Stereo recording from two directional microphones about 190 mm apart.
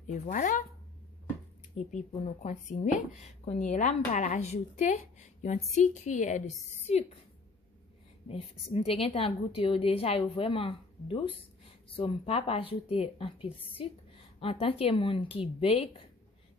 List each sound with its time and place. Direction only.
0.0 s a woman's voice: 40° left (ahead or behind)
1.9 s a woman's voice: 40° left (ahead or behind)
8.3 s a woman's voice: 30° left (ahead or behind)